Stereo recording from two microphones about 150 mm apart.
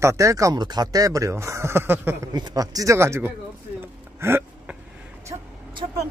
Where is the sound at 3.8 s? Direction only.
15° right (ahead or behind).